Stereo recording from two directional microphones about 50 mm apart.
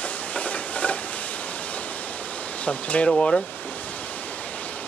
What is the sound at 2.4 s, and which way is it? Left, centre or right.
Speech, left.